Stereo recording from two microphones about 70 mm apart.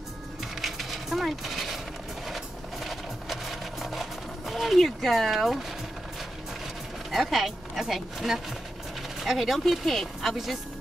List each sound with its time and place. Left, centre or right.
0.4 s a sound: centre
2.2 s sewing machine: centre
7.1 s speech: centre